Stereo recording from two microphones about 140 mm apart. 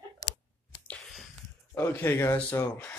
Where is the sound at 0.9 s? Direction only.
5° left (ahead or behind).